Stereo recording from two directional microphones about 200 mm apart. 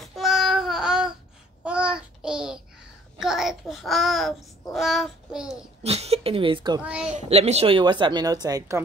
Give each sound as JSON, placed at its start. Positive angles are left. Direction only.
{"t": 0.0, "sound": "child singing", "side_deg": 0}
{"t": 5.9, "sound": "speech", "side_deg": -30}
{"t": 6.8, "sound": "a child's voice", "side_deg": -5}
{"t": 7.2, "sound": "a woman's voice", "side_deg": -30}